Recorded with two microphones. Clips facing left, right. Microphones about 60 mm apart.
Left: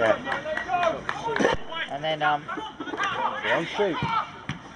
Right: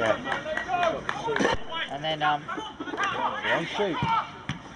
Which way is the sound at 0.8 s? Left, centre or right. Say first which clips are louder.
Left 1 dB; centre.